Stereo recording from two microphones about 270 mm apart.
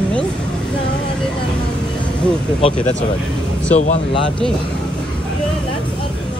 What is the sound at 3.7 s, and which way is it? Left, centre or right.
Speech, left.